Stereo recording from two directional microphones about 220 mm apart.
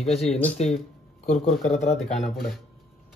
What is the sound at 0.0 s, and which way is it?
Speech, 30° left (ahead or behind).